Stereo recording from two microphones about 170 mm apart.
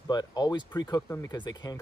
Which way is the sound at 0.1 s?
25° left (ahead or behind).